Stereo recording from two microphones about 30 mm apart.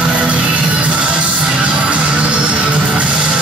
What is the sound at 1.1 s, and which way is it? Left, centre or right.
Music, right.